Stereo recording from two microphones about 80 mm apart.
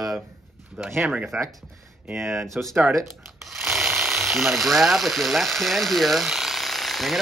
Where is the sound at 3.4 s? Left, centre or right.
Centre.